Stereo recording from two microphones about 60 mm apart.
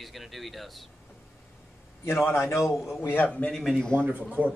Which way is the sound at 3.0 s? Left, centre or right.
Left.